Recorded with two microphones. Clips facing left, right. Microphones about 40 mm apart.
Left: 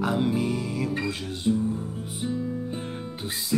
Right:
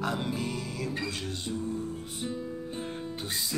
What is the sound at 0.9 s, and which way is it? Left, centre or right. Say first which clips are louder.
Music: left 5 dB; left.